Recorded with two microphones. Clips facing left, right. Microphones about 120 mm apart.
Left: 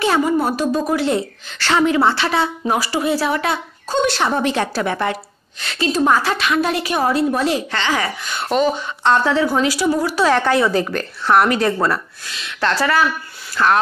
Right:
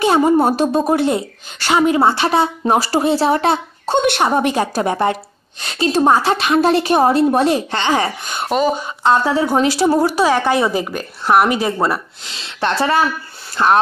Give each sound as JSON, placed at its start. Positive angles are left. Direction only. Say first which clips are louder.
{"t": 0.0, "sound": "a sound", "louder": "right 4 dB", "side_deg": -25}
{"t": 1.0, "sound": "a woman's voice", "louder": "right 1 dB", "side_deg": -15}
{"t": 2.6, "sound": "a woman's voice", "louder": "right 4 dB", "side_deg": -35}
{"t": 3.8, "sound": "a woman's voice", "louder": "right 2 dB", "side_deg": -65}
{"t": 4.2, "sound": "a woman's voice", "louder": "right 3 dB", "side_deg": -15}
{"t": 8.5, "sound": "a woman's voice", "louder": "right 1 dB", "side_deg": -10}
{"t": 9.4, "sound": "a woman's voice", "louder": "right 2 dB", "side_deg": -25}
{"t": 10.1, "sound": "a woman's voice", "louder": "right 1 dB", "side_deg": -15}
{"t": 12.3, "sound": "a woman's voice", "louder": "right 1 dB", "side_deg": -30}